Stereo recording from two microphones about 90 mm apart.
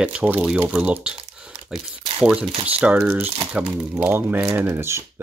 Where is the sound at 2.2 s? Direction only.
5° right (ahead or behind); by 3.3 s 25° right (ahead or behind).